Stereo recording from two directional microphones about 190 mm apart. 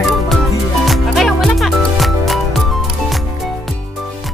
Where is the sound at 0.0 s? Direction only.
Centre (ahead or behind).